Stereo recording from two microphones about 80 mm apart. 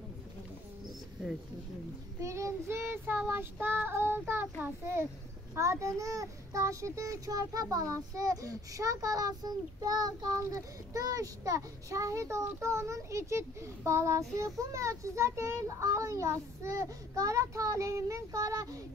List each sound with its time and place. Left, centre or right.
2.1 s a child's voice: right
3.3 s child singing: right
5.5 s a child's voice: right